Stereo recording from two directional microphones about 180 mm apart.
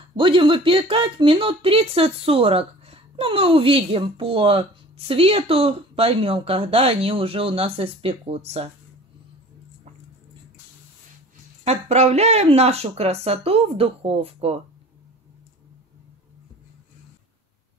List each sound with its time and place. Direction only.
0.1 s speech: 30° right (ahead or behind)
11.6 s speech: 35° right (ahead or behind)